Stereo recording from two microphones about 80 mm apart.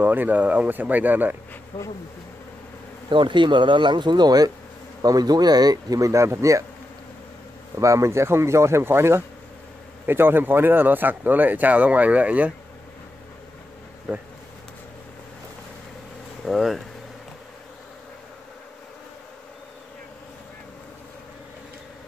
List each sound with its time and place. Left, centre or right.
0.0 s speech: right
3.1 s speech: right
7.8 s speech: right; by 12.5 s centre
16.4 s speech: centre